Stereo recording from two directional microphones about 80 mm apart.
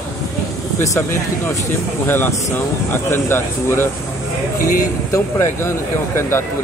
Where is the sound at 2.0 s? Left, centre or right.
Left.